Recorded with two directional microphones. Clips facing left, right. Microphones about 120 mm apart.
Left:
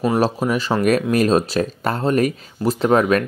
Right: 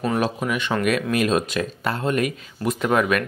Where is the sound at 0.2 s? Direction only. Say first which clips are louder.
Left 5 dB; 35° left (ahead or behind).